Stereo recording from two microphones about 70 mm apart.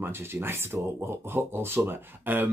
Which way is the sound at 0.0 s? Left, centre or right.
Right.